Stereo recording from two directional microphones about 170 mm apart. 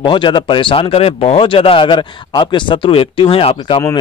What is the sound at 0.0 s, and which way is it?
Speech, 30° left (ahead or behind).